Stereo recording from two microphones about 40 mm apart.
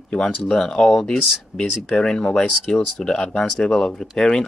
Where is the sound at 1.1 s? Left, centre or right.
Left.